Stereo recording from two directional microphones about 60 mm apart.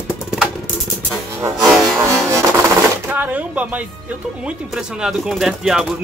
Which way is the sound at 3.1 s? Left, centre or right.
Right.